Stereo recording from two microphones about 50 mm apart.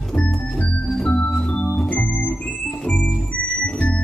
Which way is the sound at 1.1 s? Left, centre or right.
Left.